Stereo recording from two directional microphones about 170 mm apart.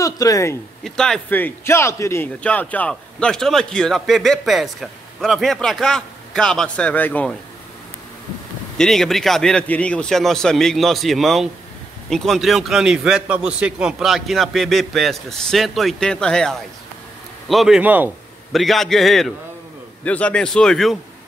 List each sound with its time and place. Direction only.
0.0 s a man's voice: 20° left (ahead or behind)
0.8 s speech: 5° left (ahead or behind)
8.7 s speech: centre (ahead or behind)
18.5 s speech: centre (ahead or behind)